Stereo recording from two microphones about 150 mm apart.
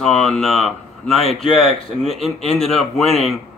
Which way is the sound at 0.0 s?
Centre (ahead or behind).